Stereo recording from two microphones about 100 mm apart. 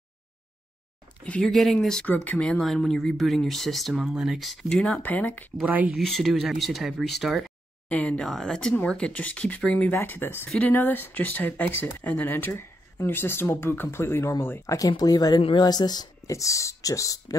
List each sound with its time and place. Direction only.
1.2 s speech: 10° left (ahead or behind)
2.0 s speech: 15° left (ahead or behind)
5.7 s speech: 15° right (ahead or behind)
5.9 s speech: centre (ahead or behind)
7.9 s speech: 15° left (ahead or behind)
14.9 s speech: 40° left (ahead or behind)
16.3 s speech: 30° left (ahead or behind)